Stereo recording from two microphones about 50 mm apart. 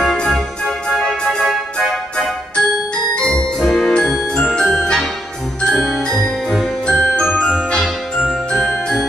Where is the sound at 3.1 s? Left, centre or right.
Centre.